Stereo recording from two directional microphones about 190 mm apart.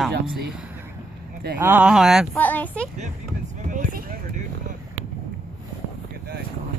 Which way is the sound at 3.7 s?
45° right (ahead or behind).